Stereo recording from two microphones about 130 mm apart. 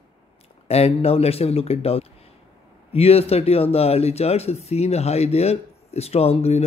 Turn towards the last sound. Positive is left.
turn(degrees=55)  # may be behind; listen again after turning